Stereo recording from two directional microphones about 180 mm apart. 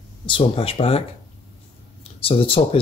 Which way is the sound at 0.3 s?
30° left (ahead or behind).